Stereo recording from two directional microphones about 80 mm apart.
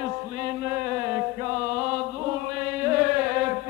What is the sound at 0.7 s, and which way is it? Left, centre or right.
Chant, right.